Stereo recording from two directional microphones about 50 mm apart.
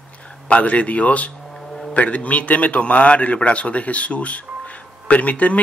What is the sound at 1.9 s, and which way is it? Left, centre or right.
A man's voice, left.